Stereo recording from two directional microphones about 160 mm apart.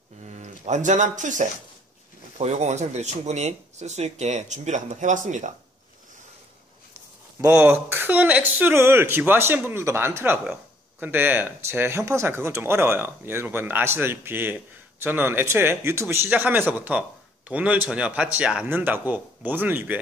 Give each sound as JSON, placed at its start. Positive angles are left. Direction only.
{"t": 0.2, "sound": "speech", "side_deg": -45}
{"t": 7.4, "sound": "speech", "side_deg": -15}